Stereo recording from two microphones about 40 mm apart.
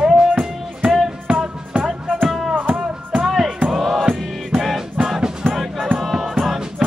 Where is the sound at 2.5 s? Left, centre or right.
Right.